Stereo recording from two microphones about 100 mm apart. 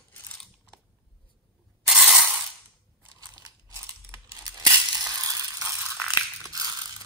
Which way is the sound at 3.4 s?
30° right (ahead or behind).